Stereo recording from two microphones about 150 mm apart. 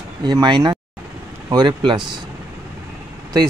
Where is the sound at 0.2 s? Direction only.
30° right (ahead or behind).